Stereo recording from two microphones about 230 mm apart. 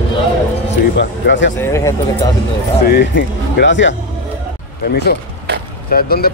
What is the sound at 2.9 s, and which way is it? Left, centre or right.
Speech, left.